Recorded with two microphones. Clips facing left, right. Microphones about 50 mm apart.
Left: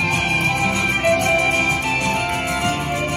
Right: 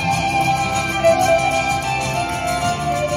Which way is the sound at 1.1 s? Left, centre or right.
Left.